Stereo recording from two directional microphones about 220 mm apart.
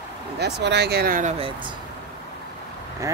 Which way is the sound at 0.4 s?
50° right (ahead or behind).